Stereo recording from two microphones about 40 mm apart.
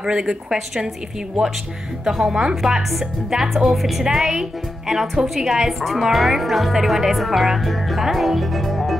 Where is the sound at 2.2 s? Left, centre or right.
Centre.